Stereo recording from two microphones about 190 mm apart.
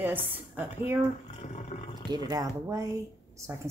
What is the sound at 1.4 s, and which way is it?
Roar, 35° left (ahead or behind).